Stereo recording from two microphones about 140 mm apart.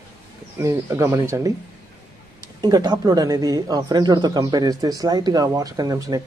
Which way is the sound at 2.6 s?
30° right (ahead or behind).